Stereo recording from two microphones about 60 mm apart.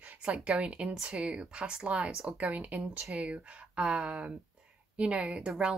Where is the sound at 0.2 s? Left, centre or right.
Centre.